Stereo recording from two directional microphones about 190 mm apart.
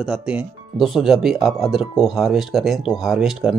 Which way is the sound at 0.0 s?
5° right (ahead or behind).